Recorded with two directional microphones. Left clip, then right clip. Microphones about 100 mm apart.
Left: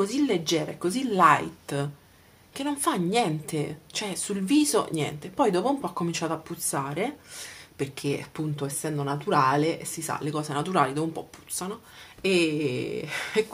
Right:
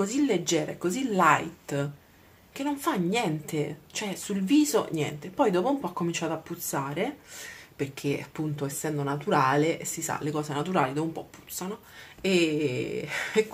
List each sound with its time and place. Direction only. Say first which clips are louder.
0.0 s a woman's voice: left 1 dB; 30° left (ahead or behind)